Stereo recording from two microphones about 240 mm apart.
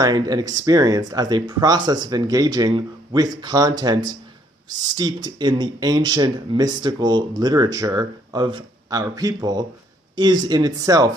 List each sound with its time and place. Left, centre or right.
0.0 s speech: centre